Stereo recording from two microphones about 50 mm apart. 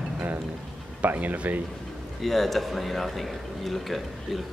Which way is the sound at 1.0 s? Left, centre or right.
Right.